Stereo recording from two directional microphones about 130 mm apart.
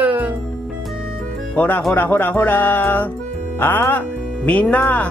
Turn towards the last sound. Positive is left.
turn(degrees=10)  # may be behind; listen again after turning